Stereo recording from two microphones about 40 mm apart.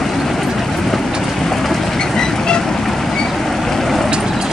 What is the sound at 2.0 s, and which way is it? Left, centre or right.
Vehicle, centre.